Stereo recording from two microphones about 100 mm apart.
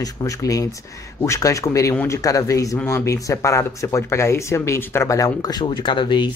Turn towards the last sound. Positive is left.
turn(degrees=50)  # may be behind; listen again after turning